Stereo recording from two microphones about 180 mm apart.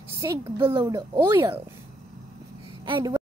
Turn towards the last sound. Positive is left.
turn(degrees=-25)  # may be behind; listen again after turning